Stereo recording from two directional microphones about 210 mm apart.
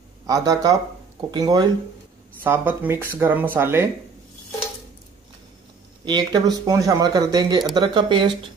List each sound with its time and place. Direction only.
0.3 s speech: 15° right (ahead or behind)
6.0 s speech: 20° right (ahead or behind)